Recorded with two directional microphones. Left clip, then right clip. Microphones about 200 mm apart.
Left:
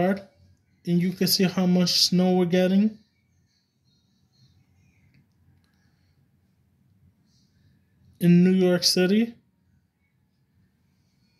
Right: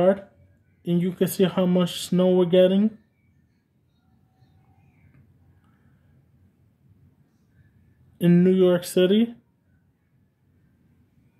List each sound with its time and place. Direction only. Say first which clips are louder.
0.8 s speech: right 1 dB; 15° right (ahead or behind)
8.2 s speech: right 3 dB; 20° right (ahead or behind)